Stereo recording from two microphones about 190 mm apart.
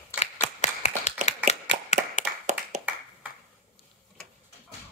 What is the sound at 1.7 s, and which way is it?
Clapping, 45° right (ahead or behind).